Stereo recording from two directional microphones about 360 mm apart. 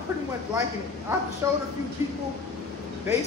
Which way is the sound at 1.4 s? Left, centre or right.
Centre.